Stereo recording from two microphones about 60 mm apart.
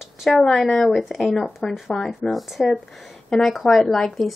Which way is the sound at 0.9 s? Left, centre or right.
Centre.